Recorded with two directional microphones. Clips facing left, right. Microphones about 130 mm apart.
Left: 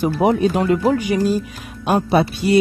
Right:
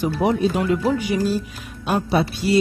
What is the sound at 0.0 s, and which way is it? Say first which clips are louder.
Music: left 3 dB; 55° left (ahead or behind).